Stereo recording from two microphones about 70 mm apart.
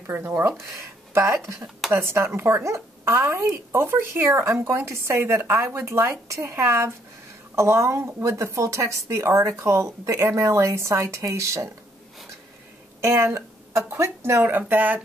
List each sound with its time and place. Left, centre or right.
0.0 s a woman's voice: right
13.0 s speech: right
14.7 s speech: right